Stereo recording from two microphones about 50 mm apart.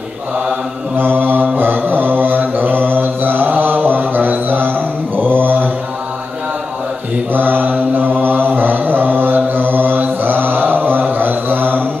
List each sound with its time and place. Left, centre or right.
0.9 s mantra: right
7.3 s mantra: right